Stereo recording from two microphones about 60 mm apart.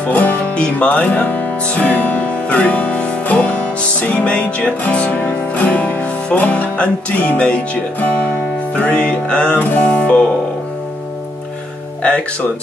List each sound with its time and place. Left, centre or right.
0.0 s music: left
5.1 s music: left
12.0 s speech: centre